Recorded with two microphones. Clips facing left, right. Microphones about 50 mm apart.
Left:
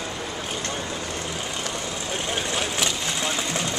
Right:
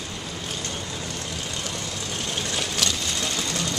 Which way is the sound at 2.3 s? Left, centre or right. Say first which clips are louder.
Left 2 dB; centre.